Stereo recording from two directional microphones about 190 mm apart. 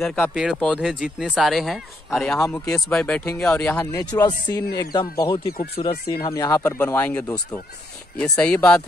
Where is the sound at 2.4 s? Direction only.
15° left (ahead or behind).